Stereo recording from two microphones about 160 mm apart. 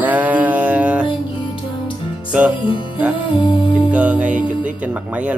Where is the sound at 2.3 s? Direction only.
10° right (ahead or behind).